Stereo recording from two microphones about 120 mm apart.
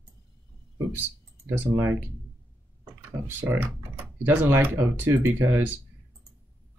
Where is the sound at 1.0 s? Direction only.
15° right (ahead or behind).